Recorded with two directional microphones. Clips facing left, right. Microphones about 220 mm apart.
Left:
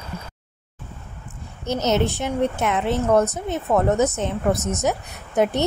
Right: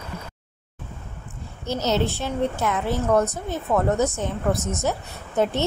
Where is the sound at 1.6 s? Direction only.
20° left (ahead or behind).